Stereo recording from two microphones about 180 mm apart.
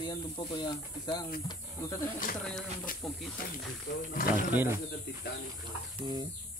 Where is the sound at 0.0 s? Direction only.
25° left (ahead or behind).